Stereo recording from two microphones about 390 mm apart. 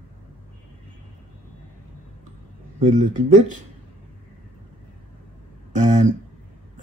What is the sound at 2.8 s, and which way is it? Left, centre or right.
Speech, centre.